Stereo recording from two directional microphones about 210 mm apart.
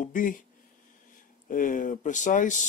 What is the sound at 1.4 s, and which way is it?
Speech, 40° left (ahead or behind).